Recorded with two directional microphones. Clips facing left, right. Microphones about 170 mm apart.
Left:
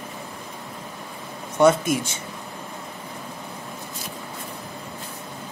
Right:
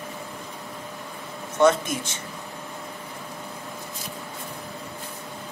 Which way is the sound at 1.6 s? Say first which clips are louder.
Left 2 dB; 10° left (ahead or behind).